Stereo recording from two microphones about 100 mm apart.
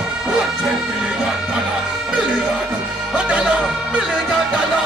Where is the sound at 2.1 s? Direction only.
10° right (ahead or behind).